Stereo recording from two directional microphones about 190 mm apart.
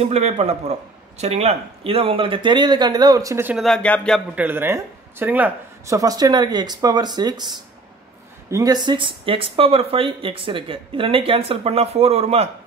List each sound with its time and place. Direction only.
0.0 s speech: 35° right (ahead or behind); by 3.5 s 15° right (ahead or behind)
3.5 s speech: centre (ahead or behind)
4.4 s speech: 10° right (ahead or behind)
8.5 s speech: 20° right (ahead or behind)